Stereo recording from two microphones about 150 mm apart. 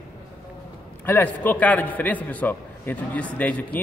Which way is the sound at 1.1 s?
15° left (ahead or behind).